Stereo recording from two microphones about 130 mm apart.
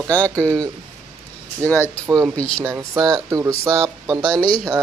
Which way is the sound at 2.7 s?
25° right (ahead or behind).